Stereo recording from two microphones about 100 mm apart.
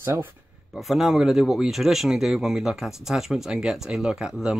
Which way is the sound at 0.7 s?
Centre (ahead or behind).